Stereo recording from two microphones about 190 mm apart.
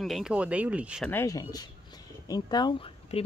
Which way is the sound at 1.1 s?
15° left (ahead or behind).